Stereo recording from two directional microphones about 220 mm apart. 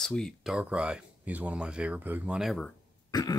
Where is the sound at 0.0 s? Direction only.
Centre (ahead or behind).